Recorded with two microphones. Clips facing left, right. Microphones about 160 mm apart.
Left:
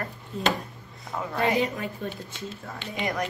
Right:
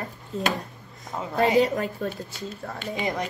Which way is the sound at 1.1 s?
25° right (ahead or behind).